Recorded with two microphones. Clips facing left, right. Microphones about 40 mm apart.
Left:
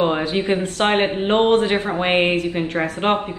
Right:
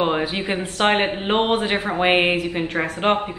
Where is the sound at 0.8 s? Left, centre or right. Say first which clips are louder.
Even; right.